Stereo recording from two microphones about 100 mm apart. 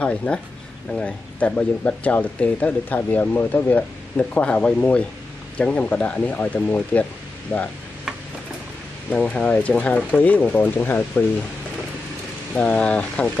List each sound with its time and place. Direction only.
0.0 s speech: 10° left (ahead or behind)
9.1 s speech: 10° left (ahead or behind)
12.5 s speech: 10° left (ahead or behind)